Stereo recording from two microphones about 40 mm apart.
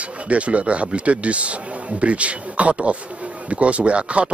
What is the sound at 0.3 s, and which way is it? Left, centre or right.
Speech, right.